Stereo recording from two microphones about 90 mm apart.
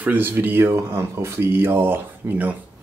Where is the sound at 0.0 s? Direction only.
20° right (ahead or behind).